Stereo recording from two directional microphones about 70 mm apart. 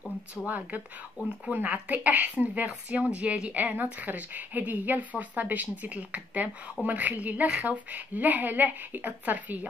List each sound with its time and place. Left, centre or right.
0.5 s speech: right